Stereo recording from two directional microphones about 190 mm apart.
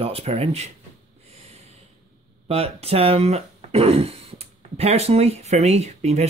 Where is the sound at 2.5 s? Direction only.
30° right (ahead or behind).